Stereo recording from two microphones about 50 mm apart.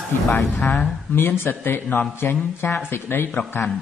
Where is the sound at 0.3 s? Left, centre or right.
Left.